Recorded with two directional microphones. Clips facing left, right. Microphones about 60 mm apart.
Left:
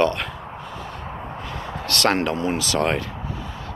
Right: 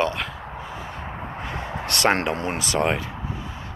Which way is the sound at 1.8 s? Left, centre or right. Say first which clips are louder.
Left 1 dB; right.